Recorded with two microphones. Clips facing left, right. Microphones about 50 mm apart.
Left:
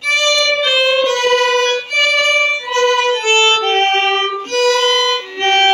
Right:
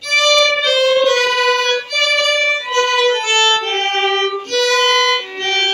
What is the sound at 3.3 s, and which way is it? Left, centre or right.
Music, left.